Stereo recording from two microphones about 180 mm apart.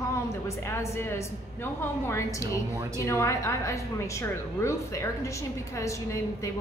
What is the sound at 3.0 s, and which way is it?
Speech, 15° left (ahead or behind).